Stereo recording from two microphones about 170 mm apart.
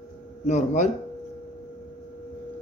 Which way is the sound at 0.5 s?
45° left (ahead or behind).